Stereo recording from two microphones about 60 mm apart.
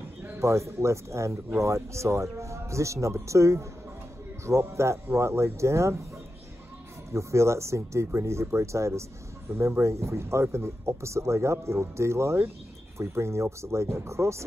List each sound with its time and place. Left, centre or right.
0.4 s a man's voice: right
7.1 s speech: right